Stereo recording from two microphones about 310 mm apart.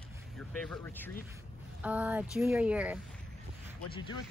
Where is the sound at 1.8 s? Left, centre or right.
Centre.